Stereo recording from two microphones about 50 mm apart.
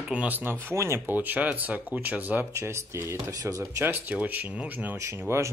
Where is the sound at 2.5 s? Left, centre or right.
Right.